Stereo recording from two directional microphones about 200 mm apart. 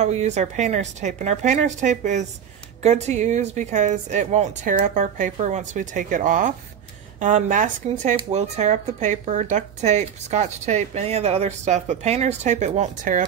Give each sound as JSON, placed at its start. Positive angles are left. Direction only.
{"t": 0.0, "sound": "speech", "side_deg": -35}